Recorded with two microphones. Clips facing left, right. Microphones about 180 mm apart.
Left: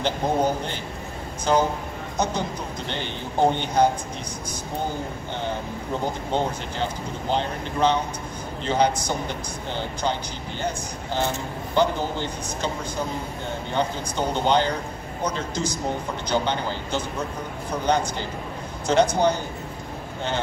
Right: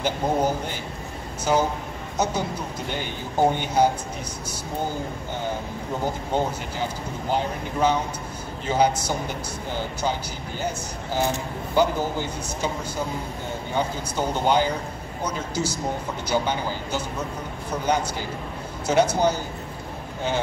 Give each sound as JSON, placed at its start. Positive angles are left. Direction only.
{"t": 0.0, "sound": "speech", "side_deg": -10}
{"t": 2.9, "sound": "speech", "side_deg": -10}
{"t": 6.3, "sound": "speech", "side_deg": -10}
{"t": 11.7, "sound": "speech", "side_deg": -10}